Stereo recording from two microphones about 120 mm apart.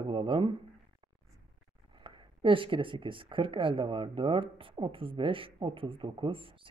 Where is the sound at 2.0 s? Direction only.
45° right (ahead or behind).